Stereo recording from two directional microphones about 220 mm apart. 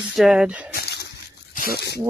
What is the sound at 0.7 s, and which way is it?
Splash, 45° left (ahead or behind).